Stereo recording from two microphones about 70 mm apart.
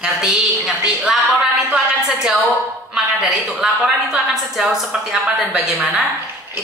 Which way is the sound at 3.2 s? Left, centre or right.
Centre.